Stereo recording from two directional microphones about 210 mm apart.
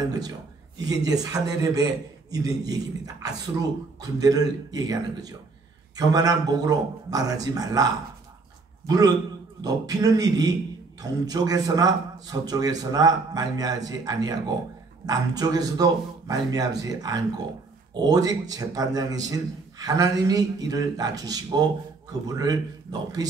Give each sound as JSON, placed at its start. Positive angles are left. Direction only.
{"t": 0.7, "sound": "a man's voice", "side_deg": -15}